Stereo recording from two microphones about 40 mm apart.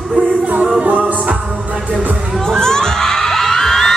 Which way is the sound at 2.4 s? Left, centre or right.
Centre.